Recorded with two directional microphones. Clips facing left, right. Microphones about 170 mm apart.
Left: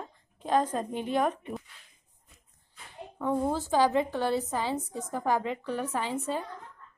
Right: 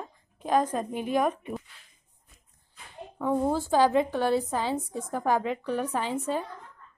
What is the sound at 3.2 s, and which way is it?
A woman's voice, 10° right (ahead or behind).